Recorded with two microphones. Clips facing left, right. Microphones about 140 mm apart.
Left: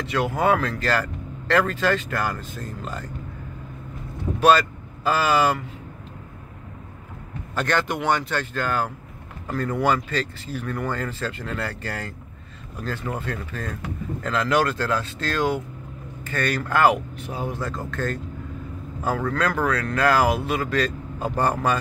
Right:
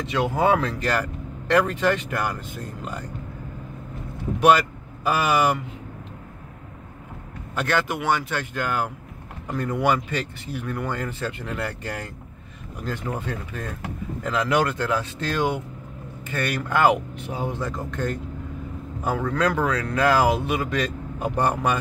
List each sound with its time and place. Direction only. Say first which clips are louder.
0.0 s speech: right 1 dB; 20° right (ahead or behind)
4.4 s speech: even; 15° right (ahead or behind)
7.5 s speech: even; 10° right (ahead or behind)